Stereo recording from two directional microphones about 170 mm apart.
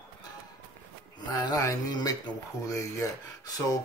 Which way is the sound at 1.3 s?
25° left (ahead or behind).